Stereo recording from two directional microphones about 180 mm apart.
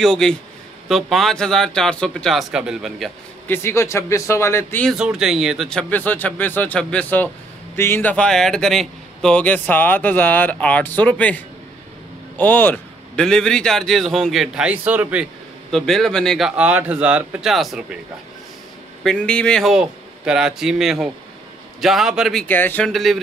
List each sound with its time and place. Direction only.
0.0 s a man's voice: 5° left (ahead or behind)
3.4 s a man's voice: 15° left (ahead or behind)
4.9 s a man's voice: 5° right (ahead or behind)
15.7 s a man's voice: centre (ahead or behind)
19.0 s a man's voice: 5° left (ahead or behind)